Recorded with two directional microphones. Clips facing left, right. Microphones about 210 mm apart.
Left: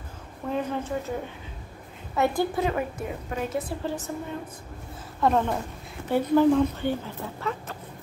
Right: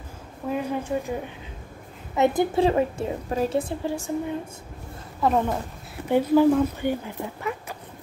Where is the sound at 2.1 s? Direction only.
20° right (ahead or behind).